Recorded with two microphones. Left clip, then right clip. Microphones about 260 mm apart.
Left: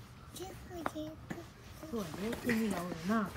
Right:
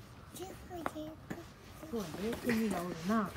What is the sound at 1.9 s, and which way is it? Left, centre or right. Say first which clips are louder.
Speech: right 1 dB; centre.